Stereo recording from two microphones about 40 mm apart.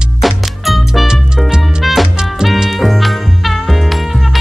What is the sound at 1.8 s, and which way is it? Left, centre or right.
Music, centre.